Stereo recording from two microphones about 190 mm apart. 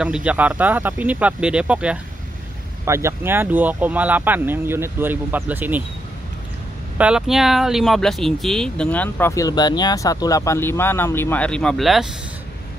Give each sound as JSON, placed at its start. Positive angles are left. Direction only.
{"t": 0.0, "sound": "speech", "side_deg": -5}
{"t": 7.0, "sound": "speech", "side_deg": -5}